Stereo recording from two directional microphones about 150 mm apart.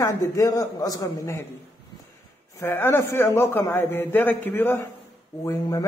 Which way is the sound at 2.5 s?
15° left (ahead or behind).